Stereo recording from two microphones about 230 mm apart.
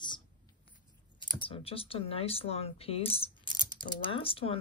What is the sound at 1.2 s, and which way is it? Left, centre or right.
Speech, left.